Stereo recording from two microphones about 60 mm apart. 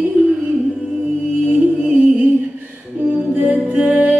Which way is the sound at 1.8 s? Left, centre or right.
Right.